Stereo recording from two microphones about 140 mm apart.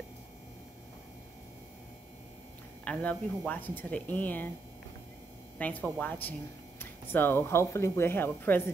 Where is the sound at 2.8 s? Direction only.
10° left (ahead or behind).